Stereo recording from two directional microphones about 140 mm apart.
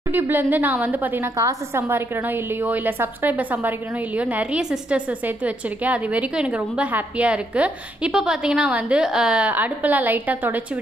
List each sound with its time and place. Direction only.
0.1 s a woman's voice: 15° right (ahead or behind)